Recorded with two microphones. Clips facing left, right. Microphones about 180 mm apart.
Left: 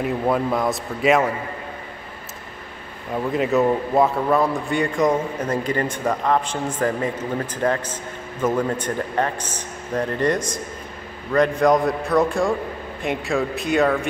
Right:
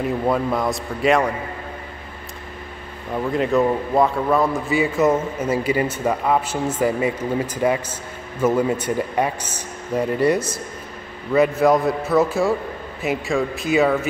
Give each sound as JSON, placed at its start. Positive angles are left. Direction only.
{"t": 0.0, "sound": "a man's voice", "side_deg": 0}
{"t": 3.1, "sound": "a man's voice", "side_deg": 0}